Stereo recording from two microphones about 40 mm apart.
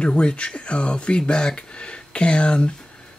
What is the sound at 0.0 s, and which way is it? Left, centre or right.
Speech, left.